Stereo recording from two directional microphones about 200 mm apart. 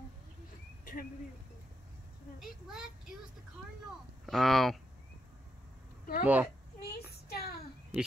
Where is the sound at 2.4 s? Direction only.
Centre (ahead or behind).